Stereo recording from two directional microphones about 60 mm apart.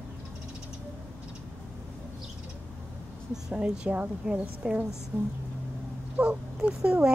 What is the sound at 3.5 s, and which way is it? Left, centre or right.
A woman's voice, right.